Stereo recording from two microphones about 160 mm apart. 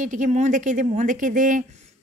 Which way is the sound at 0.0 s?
50° right (ahead or behind).